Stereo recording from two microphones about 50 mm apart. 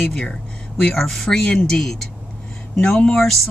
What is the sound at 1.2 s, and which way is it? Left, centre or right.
Speech, centre.